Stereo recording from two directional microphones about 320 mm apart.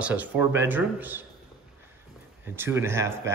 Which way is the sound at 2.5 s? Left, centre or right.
Centre.